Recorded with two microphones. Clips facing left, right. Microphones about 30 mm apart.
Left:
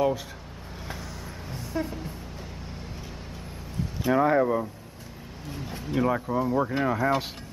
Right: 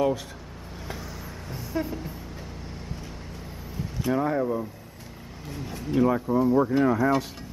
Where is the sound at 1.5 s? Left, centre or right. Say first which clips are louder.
Right 1 dB; centre.